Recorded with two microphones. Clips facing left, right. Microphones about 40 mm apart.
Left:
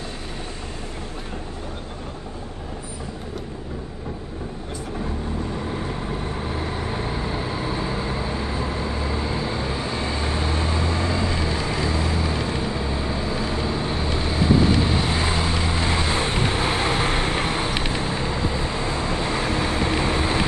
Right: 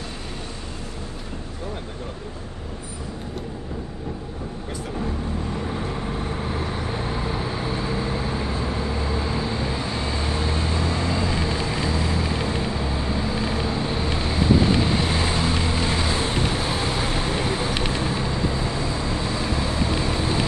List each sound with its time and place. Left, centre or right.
6.5 s vehicle: centre
11.2 s vehicle: centre
12.2 s vehicle: centre
15.8 s vehicle: centre
16.4 s vehicle: left
18.8 s vehicle: left